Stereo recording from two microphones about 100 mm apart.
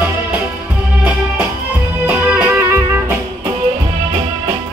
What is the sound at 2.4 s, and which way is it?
Music, 20° right (ahead or behind).